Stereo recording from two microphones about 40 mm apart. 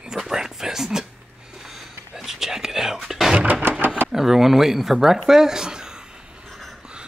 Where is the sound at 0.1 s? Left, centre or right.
Centre.